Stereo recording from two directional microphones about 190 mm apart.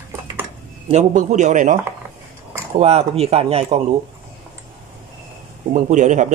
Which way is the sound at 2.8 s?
30° right (ahead or behind).